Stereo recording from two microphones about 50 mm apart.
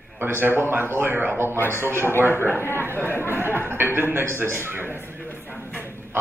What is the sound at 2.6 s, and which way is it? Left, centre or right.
Speech, left.